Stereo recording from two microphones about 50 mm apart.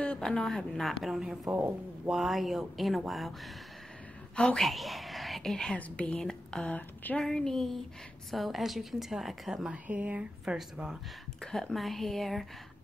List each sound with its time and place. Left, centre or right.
0.0 s a woman's voice: centre
1.2 s a woman's voice: centre
4.6 s speech: centre
5.8 s speech: left
6.1 s a woman's voice: centre
6.6 s speech: left
7.2 s a woman's voice: centre
9.8 s speech: right
10.4 s a woman's voice: centre
11.4 s a woman's voice: centre